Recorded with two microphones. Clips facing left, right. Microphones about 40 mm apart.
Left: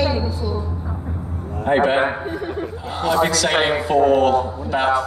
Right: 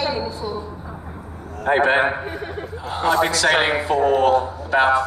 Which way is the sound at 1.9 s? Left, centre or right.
Centre.